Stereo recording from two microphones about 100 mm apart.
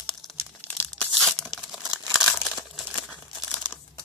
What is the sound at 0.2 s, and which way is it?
Crumpling, centre (ahead or behind).